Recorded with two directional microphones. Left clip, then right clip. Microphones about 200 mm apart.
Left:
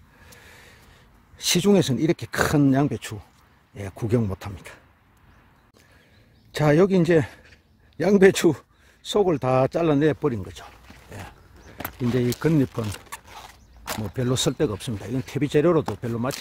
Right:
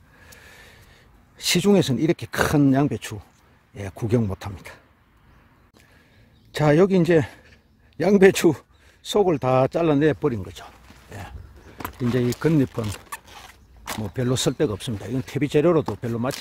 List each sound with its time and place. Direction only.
0.3 s gasp: 5° right (ahead or behind)
1.3 s speech: 5° right (ahead or behind)
6.5 s speech: 5° right (ahead or behind)
13.8 s a sound: 15° left (ahead or behind)
14.1 s speech: 5° right (ahead or behind)